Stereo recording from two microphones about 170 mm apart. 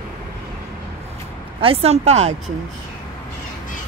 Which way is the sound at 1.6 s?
35° right (ahead or behind).